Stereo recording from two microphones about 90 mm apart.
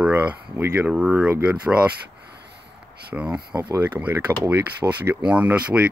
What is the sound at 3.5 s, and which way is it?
Speech, 50° right (ahead or behind).